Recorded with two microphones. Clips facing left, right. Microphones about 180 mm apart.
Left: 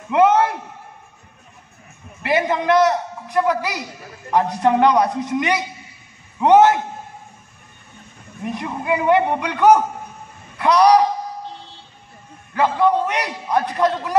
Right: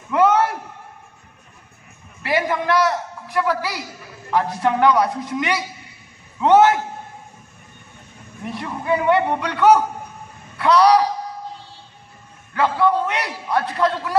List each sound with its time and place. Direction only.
0.1 s a sound: 20° left (ahead or behind)
2.2 s a man's voice: 20° left (ahead or behind)
8.5 s a man's voice: 15° left (ahead or behind)
12.5 s a man's voice: 15° left (ahead or behind)